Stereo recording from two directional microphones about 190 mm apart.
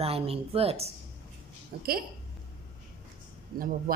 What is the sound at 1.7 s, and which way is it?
Speech, 55° right (ahead or behind).